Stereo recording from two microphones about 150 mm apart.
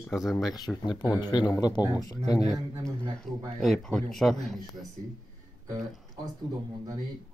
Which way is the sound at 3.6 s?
Centre (ahead or behind).